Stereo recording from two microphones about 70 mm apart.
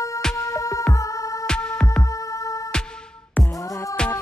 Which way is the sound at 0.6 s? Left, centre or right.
Left.